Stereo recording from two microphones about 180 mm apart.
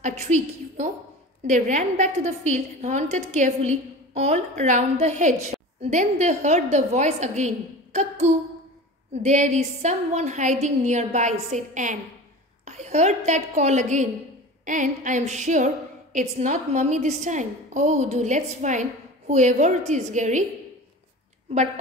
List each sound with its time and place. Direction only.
0.0 s a woman's voice: 40° right (ahead or behind)